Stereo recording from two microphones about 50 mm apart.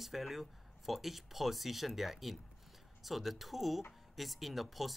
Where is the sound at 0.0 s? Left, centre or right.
Centre.